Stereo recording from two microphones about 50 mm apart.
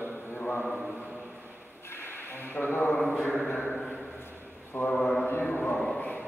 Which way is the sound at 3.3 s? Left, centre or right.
Left.